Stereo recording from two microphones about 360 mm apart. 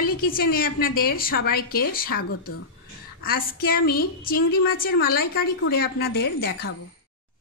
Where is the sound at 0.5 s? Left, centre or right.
Left.